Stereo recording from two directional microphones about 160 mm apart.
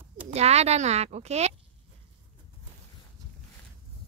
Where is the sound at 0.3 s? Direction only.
40° right (ahead or behind).